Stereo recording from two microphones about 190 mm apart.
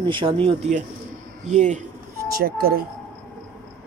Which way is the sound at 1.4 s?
40° right (ahead or behind).